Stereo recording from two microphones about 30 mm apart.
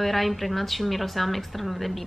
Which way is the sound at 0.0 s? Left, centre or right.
Centre.